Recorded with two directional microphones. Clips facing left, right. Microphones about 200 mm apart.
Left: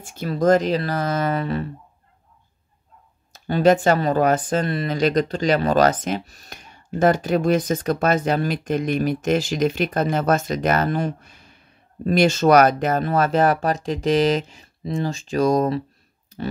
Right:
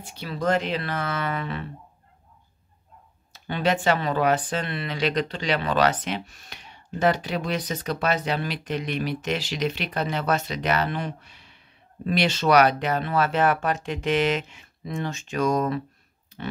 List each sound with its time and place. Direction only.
0.0 s speech: 45° left (ahead or behind)
3.3 s speech: 40° left (ahead or behind)